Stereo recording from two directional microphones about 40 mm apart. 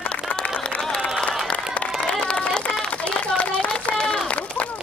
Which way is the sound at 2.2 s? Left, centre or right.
Left.